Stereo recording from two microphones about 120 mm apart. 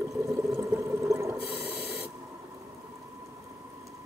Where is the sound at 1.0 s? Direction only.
20° right (ahead or behind).